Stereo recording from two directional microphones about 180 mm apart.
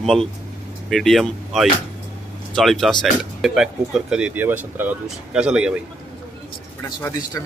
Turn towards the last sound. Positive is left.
turn(degrees=15)  # may be behind; listen again after turning